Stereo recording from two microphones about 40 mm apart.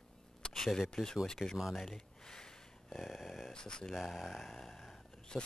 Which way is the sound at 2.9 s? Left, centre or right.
Centre.